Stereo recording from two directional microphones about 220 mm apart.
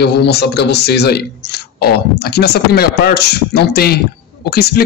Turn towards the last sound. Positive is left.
turn(degrees=45)  # may be behind; listen again after turning